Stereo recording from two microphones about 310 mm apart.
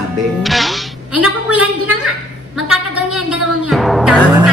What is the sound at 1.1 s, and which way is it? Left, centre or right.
Speech, right.